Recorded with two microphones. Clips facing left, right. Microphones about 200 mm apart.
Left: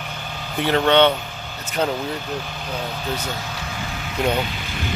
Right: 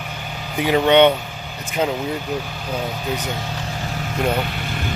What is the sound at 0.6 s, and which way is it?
Speech, 10° right (ahead or behind).